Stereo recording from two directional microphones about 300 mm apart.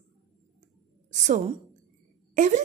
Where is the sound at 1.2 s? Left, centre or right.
Right.